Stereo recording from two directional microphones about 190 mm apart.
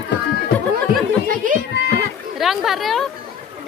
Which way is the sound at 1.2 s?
45° right (ahead or behind).